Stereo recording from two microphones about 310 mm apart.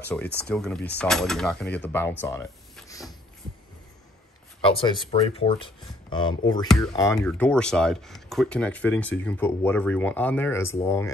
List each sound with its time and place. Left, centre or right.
0.4 s speech: centre
4.6 s speech: centre